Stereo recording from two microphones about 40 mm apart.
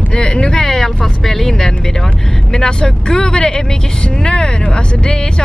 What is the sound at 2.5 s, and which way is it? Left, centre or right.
Speech, centre.